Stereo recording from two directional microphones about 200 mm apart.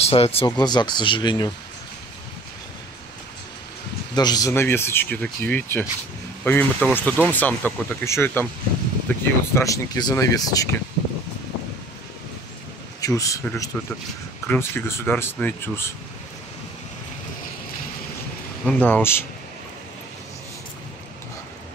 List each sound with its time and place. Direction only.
0.0 s speech: 30° left (ahead or behind)
4.1 s speech: 20° left (ahead or behind)
9.6 s speech: 20° left (ahead or behind)
13.0 s speech: 15° left (ahead or behind)
18.7 s speech: 10° left (ahead or behind)